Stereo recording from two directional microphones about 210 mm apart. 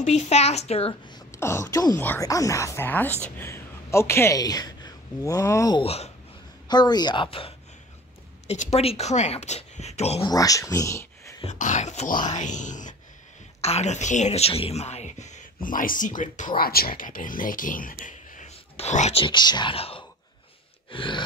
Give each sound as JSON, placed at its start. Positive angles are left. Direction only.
{"t": 0.0, "sound": "speech", "side_deg": 35}
{"t": 1.3, "sound": "speech", "side_deg": 10}
{"t": 10.3, "sound": "speech", "side_deg": 15}
{"t": 11.4, "sound": "speech", "side_deg": 35}